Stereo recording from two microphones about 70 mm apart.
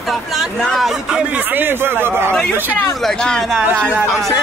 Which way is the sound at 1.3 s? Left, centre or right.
Right.